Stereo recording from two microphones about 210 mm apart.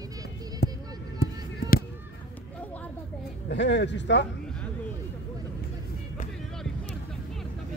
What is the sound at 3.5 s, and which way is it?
Speech, 55° left (ahead or behind).